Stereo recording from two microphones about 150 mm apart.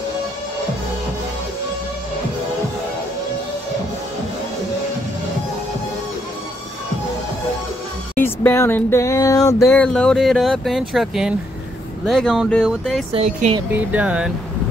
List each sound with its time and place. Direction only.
8.2 s speech: 15° left (ahead or behind)
9.7 s speech: 10° left (ahead or behind)
13.1 s speech: 45° right (ahead or behind)
13.7 s speech: 10° right (ahead or behind)